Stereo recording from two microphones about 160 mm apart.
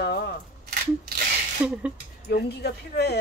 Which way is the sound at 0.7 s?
80° right.